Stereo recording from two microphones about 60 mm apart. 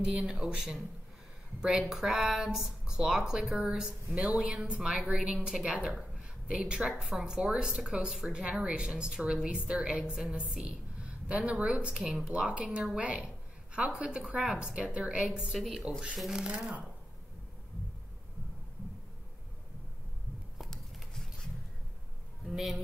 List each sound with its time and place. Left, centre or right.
0.0 s a woman's voice: centre
20.7 s a sound: centre
22.5 s a man's voice: centre